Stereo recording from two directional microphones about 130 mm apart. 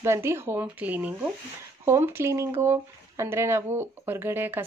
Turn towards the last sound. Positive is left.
turn(degrees=-15)  # may be behind; listen again after turning